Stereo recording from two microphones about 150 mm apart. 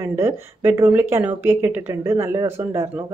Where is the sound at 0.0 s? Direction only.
15° right (ahead or behind).